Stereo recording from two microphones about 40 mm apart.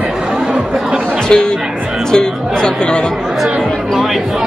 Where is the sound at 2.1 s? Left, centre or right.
Centre.